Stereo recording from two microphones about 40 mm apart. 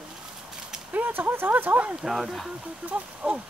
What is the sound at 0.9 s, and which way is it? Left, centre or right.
Speech, right.